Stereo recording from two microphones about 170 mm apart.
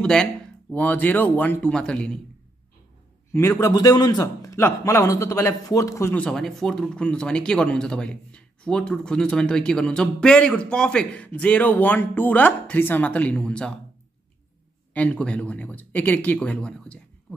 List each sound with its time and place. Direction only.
0.0 s a man's voice: 5° left (ahead or behind)
3.3 s a man's voice: 15° left (ahead or behind)
15.0 s a man's voice: 5° left (ahead or behind)